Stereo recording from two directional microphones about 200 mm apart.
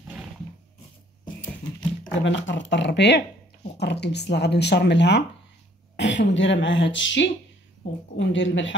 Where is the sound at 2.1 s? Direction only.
70° left (ahead or behind).